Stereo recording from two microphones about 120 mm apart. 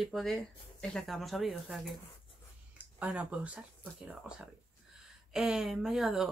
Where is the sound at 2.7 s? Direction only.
10° right (ahead or behind).